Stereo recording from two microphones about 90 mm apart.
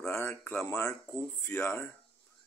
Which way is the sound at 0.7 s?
40° left (ahead or behind).